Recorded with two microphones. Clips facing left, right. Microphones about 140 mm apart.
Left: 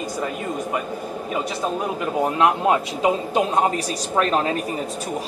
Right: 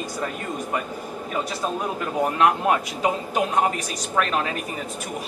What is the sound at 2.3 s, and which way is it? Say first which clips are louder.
A woman's voice: left 1 dB; 20° left (ahead or behind).